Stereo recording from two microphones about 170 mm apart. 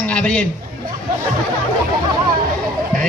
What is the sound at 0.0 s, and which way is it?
Speech, 10° left (ahead or behind).